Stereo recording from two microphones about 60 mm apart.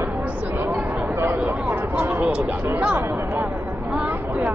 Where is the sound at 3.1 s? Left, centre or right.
Right.